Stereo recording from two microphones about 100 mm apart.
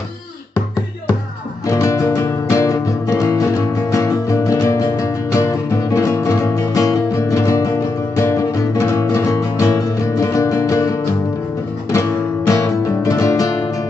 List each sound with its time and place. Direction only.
1.7 s music: 35° left (ahead or behind)